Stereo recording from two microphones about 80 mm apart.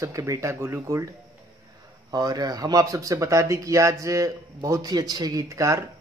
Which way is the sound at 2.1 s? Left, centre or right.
Right.